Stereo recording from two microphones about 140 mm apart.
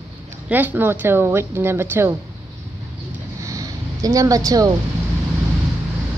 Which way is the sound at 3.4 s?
25° right (ahead or behind).